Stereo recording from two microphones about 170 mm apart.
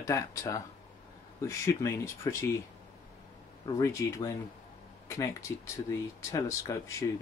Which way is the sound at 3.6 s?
20° left (ahead or behind).